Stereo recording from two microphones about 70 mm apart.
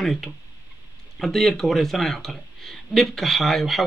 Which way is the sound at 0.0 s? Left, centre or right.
Centre.